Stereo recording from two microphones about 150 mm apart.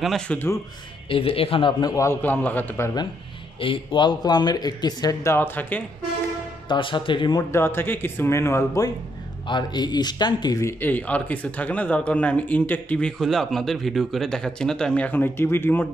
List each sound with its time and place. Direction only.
0.0 s a man's voice: centre (ahead or behind)
1.0 s speech: 35° left (ahead or behind); by 2.9 s 10° left (ahead or behind)
3.5 s speech: 35° left (ahead or behind); by 5.9 s 10° left (ahead or behind)
6.7 s speech: 35° left (ahead or behind)
7.5 s speech: 15° left (ahead or behind)